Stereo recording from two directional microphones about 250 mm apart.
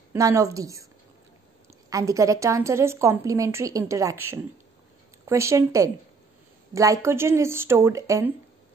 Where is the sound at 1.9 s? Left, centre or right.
Centre.